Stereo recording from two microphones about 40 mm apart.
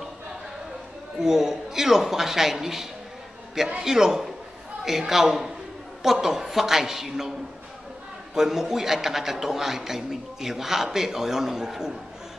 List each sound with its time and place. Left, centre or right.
1.2 s a man's voice: centre
8.4 s a man's voice: centre